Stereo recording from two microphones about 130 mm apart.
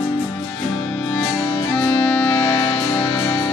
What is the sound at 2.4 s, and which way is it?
Music, 35° left (ahead or behind).